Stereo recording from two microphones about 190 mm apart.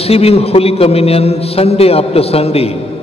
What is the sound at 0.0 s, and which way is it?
A man's voice, 30° left (ahead or behind).